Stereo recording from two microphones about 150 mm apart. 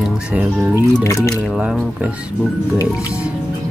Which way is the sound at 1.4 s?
5° right (ahead or behind).